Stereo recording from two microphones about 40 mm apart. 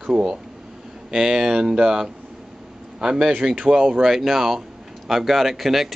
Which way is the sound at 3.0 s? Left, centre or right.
Right.